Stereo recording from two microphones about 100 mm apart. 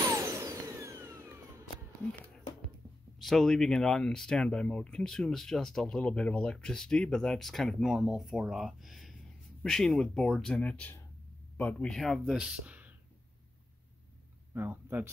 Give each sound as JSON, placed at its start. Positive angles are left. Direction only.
{"t": 0.0, "sound": "a sound", "side_deg": -30}
{"t": 3.2, "sound": "speech", "side_deg": 0}
{"t": 11.9, "sound": "speech", "side_deg": 0}
{"t": 12.4, "sound": "speech", "side_deg": -10}
{"t": 14.5, "sound": "speech", "side_deg": -20}